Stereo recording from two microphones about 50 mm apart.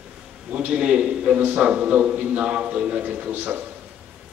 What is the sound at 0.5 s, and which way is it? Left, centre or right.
A man's voice, right.